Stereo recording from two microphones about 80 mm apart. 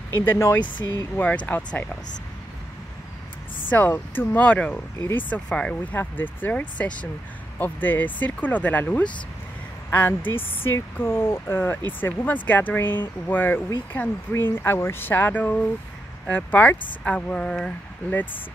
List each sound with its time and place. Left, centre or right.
0.2 s speech: left
1.1 s speech: centre
3.7 s speech: left
4.5 s speech: centre
5.9 s speech: left; by 17.7 s centre